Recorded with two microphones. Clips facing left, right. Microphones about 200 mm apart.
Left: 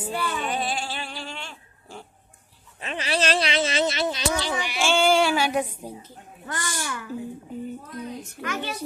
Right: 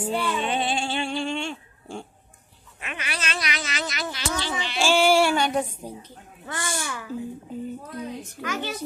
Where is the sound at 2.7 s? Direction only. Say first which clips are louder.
Left 8 dB; 30° left (ahead or behind).